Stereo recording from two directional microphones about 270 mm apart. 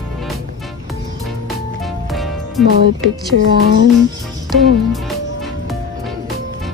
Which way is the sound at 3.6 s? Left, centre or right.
Right.